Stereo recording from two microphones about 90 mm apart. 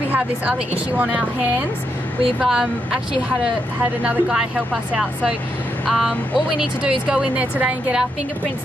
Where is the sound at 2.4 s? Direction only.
10° right (ahead or behind).